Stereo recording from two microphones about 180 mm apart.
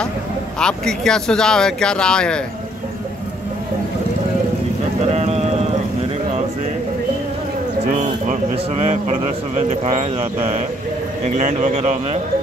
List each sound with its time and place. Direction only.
0.6 s speech: 5° left (ahead or behind)
5.0 s a sound: 35° right (ahead or behind)
8.0 s a man's voice: 40° right (ahead or behind)